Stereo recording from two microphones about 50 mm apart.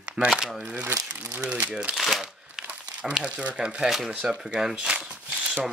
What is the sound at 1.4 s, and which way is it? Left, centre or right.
Speech, right.